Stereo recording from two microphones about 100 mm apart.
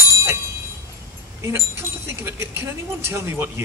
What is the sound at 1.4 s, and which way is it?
Speech, 25° right (ahead or behind).